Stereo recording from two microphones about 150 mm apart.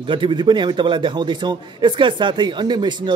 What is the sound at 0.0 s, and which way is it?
A man's voice, 35° right (ahead or behind).